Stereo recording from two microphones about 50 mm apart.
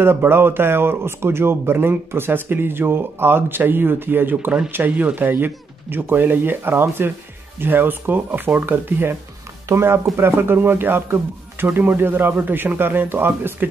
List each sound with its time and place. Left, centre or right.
0.0 s speech: right
9.7 s speech: right
10.1 s speech: right